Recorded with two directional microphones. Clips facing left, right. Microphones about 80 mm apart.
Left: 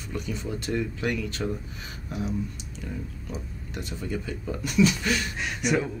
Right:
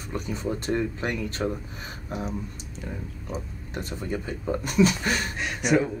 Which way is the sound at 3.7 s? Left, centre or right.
Right.